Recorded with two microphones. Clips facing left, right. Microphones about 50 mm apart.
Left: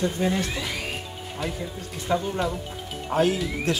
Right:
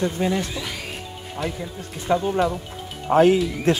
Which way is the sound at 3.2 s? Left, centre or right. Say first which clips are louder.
Right 6 dB; right.